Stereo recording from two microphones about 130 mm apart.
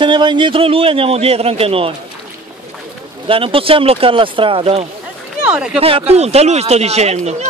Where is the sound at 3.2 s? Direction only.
45° right (ahead or behind).